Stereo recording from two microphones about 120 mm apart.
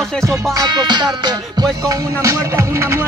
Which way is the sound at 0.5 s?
35° right (ahead or behind).